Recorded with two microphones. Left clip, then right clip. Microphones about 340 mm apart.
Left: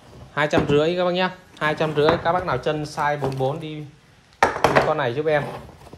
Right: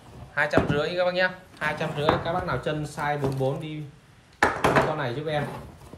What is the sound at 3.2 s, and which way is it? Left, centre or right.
Speech, centre.